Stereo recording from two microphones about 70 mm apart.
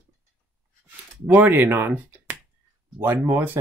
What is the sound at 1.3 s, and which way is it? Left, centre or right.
Speech, right.